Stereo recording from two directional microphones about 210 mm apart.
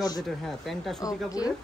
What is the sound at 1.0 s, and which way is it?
Speech, 15° left (ahead or behind).